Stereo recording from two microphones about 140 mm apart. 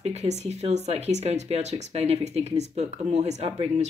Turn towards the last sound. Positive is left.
turn(degrees=-50)  # may be behind; listen again after turning